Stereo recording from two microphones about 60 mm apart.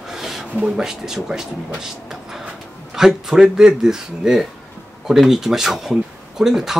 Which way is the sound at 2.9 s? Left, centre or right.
Centre.